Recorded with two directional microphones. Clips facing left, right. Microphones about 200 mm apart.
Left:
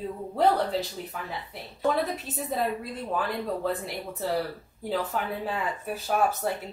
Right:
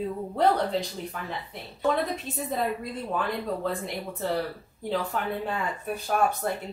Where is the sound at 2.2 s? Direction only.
Centre (ahead or behind).